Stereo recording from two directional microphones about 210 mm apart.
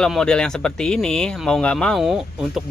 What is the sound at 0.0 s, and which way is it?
Speech, 5° left (ahead or behind).